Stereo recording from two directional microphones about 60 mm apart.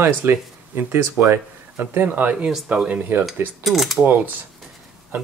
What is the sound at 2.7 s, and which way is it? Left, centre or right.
Speech, centre.